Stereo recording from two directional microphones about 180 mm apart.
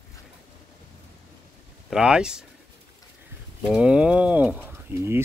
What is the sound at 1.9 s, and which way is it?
Speech, 5° right (ahead or behind).